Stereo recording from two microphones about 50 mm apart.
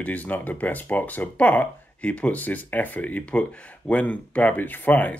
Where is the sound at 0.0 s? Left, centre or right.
Left.